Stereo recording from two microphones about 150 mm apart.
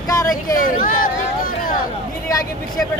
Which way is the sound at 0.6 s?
65° left (ahead or behind).